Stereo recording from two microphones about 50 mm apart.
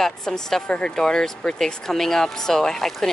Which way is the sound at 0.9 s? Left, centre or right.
Centre.